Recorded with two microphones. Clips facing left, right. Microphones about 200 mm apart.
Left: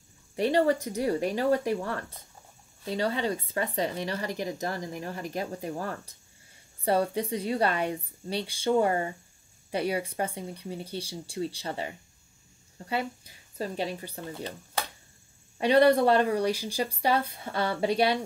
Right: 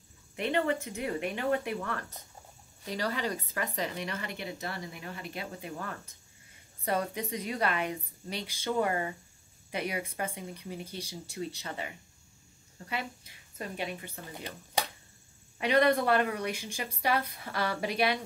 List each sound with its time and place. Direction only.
0.4 s speech: 35° left (ahead or behind)
14.3 s speech: 15° right (ahead or behind)
15.5 s speech: 30° left (ahead or behind)